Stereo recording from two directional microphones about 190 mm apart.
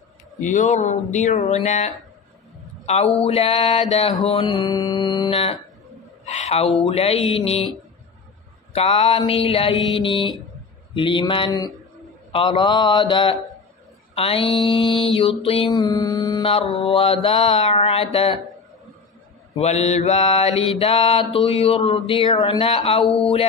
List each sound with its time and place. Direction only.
0.4 s mantra: 40° left (ahead or behind)
2.9 s mantra: 35° left (ahead or behind)
6.2 s mantra: 35° left (ahead or behind)
8.7 s mantra: 30° left (ahead or behind)
19.5 s mantra: 35° left (ahead or behind)